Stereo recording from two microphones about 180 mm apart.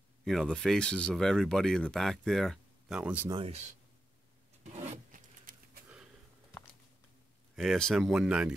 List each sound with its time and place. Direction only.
0.2 s speech: centre (ahead or behind)
3.3 s speech: 30° right (ahead or behind)
7.5 s speech: centre (ahead or behind)